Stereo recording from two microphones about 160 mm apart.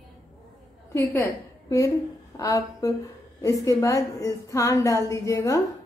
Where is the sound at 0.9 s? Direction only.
15° left (ahead or behind).